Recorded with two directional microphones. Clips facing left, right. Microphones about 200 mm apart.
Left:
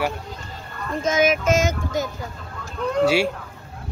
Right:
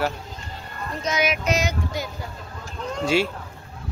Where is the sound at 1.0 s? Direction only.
45° left (ahead or behind).